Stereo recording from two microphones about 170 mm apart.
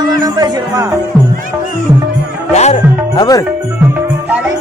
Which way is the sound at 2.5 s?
40° left (ahead or behind).